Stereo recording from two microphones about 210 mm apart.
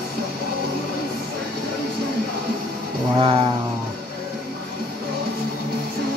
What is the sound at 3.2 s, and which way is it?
Music, 25° right (ahead or behind).